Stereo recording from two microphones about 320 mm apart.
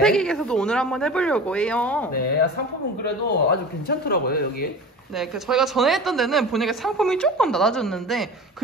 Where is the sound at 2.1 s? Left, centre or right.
Left.